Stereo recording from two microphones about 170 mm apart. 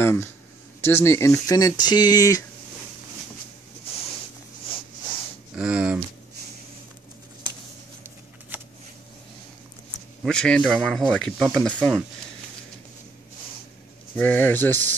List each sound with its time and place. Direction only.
0.0 s speech: 15° left (ahead or behind)
5.6 s speech: 5° right (ahead or behind)
10.2 s speech: 5° left (ahead or behind)
14.1 s speech: 10° left (ahead or behind)